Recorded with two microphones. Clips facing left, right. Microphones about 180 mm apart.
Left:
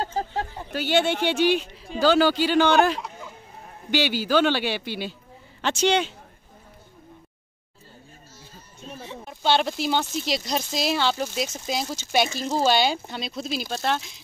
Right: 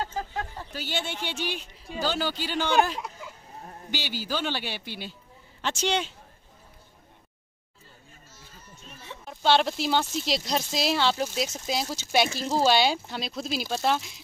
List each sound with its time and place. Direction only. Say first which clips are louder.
0.0 s a sound: left 4 dB; 35° left (ahead or behind)
0.7 s a man's voice: left 11 dB; 70° left (ahead or behind); by 5.1 s 90° left
5.6 s a man's voice: left 6 dB; 65° left (ahead or behind)
9.2 s speech: even; centre (ahead or behind)